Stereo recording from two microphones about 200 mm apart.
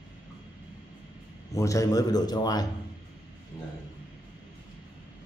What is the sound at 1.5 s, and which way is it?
A man's voice, 15° left (ahead or behind).